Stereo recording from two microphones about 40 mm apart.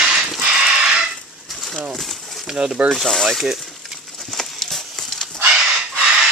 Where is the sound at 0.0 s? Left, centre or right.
Right.